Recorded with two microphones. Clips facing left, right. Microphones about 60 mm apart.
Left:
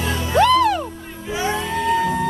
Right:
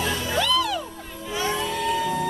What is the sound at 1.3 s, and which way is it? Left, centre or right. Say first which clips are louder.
Music: left 4 dB; centre.